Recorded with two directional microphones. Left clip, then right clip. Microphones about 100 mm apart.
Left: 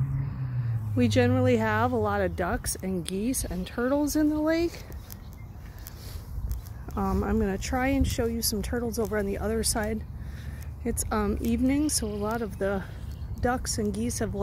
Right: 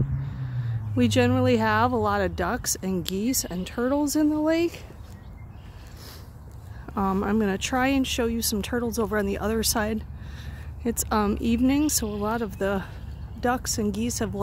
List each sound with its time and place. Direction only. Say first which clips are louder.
0.4 s speech: right 1 dB; 25° right (ahead or behind)
7.0 s speech: right 3 dB; 40° right (ahead or behind)
12.1 s speech: right 3 dB; 30° right (ahead or behind)